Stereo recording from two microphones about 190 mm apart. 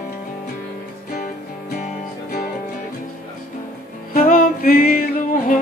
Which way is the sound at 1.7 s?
40° left (ahead or behind).